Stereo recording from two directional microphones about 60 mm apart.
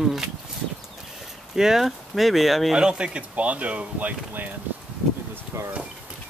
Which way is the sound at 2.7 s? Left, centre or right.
Centre.